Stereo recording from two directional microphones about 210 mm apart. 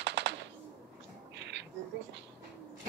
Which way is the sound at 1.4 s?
55° right (ahead or behind).